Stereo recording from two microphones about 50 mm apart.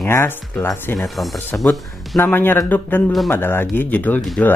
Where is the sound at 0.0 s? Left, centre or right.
Left.